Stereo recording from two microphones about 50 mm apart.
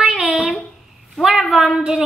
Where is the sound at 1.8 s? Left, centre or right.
Centre.